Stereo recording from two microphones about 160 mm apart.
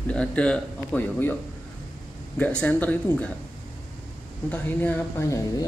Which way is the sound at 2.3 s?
10° left (ahead or behind).